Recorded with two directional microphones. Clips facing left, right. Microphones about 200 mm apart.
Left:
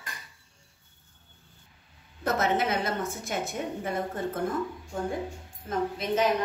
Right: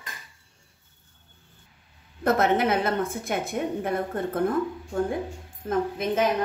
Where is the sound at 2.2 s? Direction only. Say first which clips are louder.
Right 5 dB; 60° right (ahead or behind).